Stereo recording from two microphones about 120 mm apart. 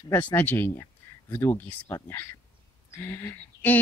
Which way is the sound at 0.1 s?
15° left (ahead or behind).